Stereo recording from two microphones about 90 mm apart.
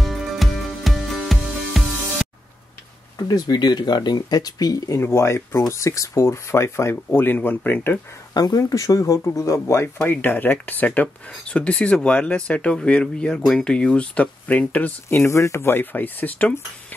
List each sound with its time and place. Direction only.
0.0 s music: centre (ahead or behind)
3.2 s speech: 45° left (ahead or behind); by 8.0 s 20° left (ahead or behind)
8.4 s speech: 45° left (ahead or behind)
9.9 s speech: 20° left (ahead or behind)